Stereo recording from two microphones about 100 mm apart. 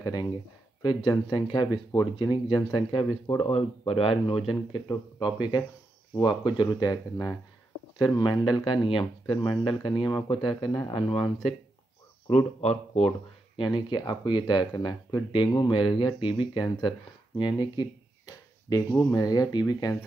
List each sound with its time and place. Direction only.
0.0 s speech: 45° left (ahead or behind)
3.4 s speech: 70° left (ahead or behind)
4.8 s speech: 50° left (ahead or behind)
8.0 s speech: 55° left (ahead or behind)
10.9 s speech: 65° left (ahead or behind)
12.5 s speech: 90° left
13.6 s speech: 50° left (ahead or behind); by 19.1 s 25° left (ahead or behind)
19.1 s speech: 40° left (ahead or behind)